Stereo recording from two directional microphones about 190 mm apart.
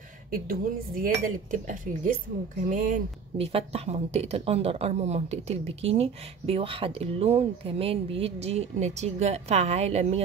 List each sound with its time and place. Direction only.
0.5 s speech: 50° right (ahead or behind)
3.3 s speech: 30° right (ahead or behind)